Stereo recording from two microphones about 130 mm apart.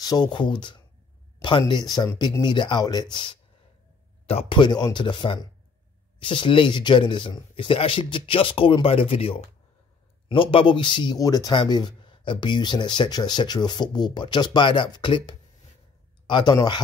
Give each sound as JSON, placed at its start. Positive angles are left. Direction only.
{"t": 0.0, "sound": "speech", "side_deg": 30}